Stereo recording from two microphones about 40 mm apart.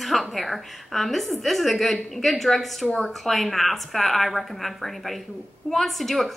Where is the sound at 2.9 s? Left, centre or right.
Centre.